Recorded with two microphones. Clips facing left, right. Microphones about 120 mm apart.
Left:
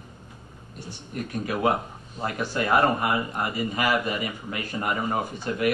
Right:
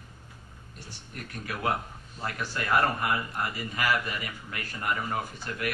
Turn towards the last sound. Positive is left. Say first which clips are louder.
# left 8 dB
turn(degrees=20)  # may be behind; listen again after turning